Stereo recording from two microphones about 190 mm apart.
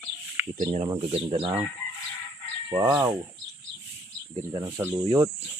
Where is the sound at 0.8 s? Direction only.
30° right (ahead or behind).